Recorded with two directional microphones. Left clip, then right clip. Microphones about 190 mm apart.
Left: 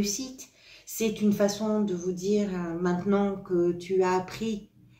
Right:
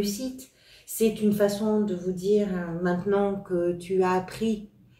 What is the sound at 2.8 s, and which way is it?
Speech, 35° left (ahead or behind).